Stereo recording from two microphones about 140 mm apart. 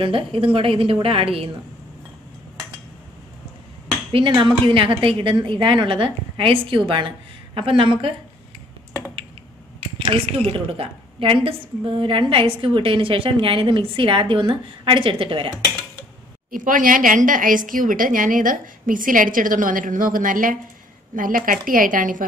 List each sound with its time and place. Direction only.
0.0 s a woman's voice: 40° right (ahead or behind)
4.1 s a woman's voice: 40° right (ahead or behind)
9.9 s a woman's voice: 40° right (ahead or behind)
16.5 s a woman's voice: 75° right (ahead or behind)